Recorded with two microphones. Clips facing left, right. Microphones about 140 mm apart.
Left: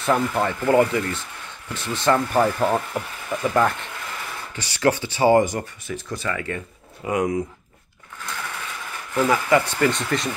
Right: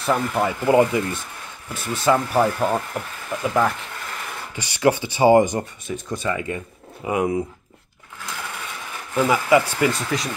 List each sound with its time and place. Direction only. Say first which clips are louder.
0.0 s speech: even; centre (ahead or behind)
4.6 s speech: right 2 dB; 15° right (ahead or behind)
9.1 s speech: right 1 dB; 15° right (ahead or behind)